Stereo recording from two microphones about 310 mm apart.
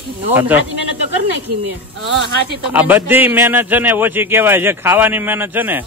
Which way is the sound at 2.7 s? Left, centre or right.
Centre.